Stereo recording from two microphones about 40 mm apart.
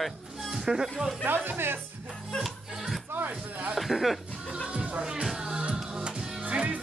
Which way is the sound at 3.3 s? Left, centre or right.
Right.